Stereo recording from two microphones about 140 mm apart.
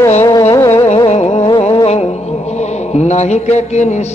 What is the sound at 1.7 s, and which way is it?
Music, 45° left (ahead or behind).